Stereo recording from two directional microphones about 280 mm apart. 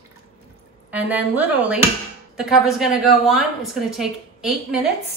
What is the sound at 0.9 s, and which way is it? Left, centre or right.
A woman's voice, centre.